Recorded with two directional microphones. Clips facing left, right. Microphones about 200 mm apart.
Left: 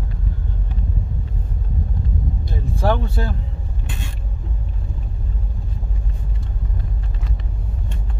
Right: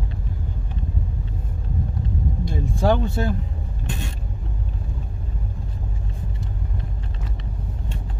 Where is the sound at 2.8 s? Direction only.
20° right (ahead or behind).